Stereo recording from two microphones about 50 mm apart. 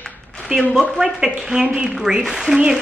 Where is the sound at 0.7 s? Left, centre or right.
Centre.